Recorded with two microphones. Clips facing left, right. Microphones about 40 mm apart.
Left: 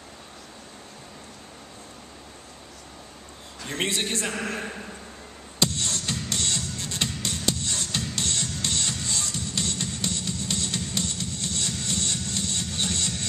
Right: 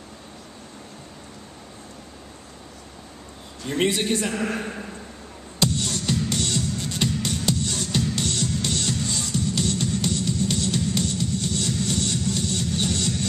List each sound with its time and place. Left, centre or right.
3.6 s a man's voice: centre
5.8 s music: centre